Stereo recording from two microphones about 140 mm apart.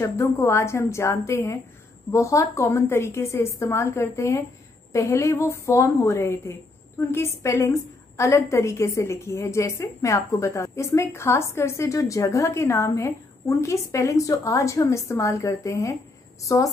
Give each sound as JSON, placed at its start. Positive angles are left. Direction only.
{"t": 0.0, "sound": "a woman's voice", "side_deg": 20}